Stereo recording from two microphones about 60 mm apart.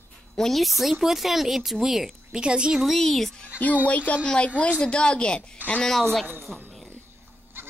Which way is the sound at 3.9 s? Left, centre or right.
Left.